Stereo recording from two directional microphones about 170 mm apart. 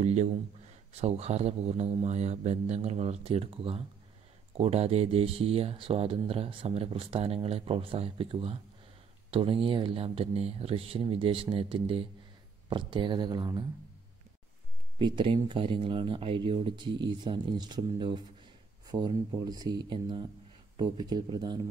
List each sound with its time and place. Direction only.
0.0 s speech: 40° right (ahead or behind); by 13.7 s 25° right (ahead or behind)
15.0 s speech: 25° right (ahead or behind)